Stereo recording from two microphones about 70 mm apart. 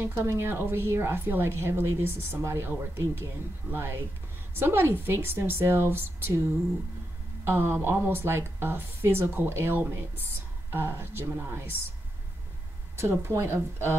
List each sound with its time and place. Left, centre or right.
0.0 s a woman's voice: right
12.9 s a woman's voice: right